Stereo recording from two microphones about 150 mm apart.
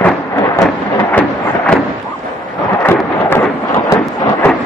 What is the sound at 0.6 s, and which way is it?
Thunder, 15° left (ahead or behind).